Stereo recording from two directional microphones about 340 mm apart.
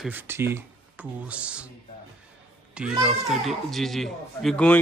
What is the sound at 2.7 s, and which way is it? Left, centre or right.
Speech, centre.